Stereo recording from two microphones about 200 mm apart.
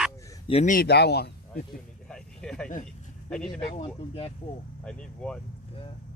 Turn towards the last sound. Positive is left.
turn(degrees=5)  # may be behind; listen again after turning